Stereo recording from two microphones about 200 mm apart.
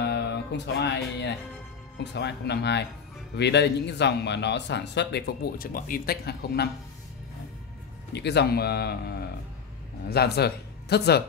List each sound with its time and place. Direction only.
0.0 s a man's voice: 60° left (ahead or behind)
8.1 s a man's voice: 55° left (ahead or behind)